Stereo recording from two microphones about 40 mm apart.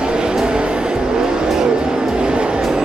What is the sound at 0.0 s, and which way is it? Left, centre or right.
Vehicle, right.